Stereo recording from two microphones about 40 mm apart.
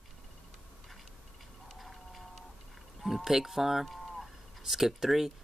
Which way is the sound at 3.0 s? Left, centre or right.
Centre.